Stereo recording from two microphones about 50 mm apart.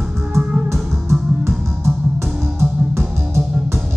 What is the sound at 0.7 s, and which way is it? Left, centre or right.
Music, right.